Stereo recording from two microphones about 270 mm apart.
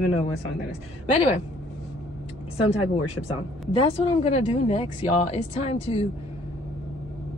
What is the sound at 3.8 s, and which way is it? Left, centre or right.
Female singing, left.